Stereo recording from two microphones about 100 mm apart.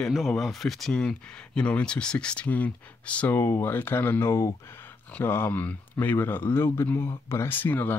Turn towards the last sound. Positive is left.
turn(degrees=20)  # may be behind; listen again after turning